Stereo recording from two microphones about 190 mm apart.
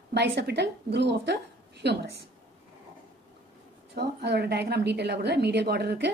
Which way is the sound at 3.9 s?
60° right (ahead or behind).